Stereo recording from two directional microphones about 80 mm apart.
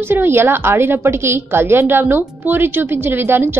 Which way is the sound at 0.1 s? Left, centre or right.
Right.